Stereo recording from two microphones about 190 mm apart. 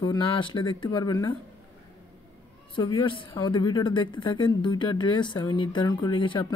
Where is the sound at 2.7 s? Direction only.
25° left (ahead or behind).